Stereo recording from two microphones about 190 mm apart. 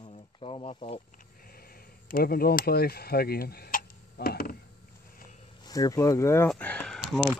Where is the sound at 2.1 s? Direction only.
50° left (ahead or behind).